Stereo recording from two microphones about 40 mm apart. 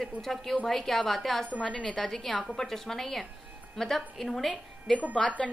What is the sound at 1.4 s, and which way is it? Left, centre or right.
A woman's voice, centre.